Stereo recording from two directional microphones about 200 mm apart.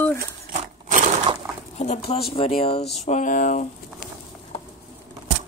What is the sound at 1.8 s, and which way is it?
Speech, 30° left (ahead or behind).